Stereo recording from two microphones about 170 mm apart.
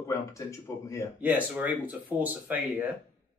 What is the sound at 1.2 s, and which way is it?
Speech, 10° right (ahead or behind).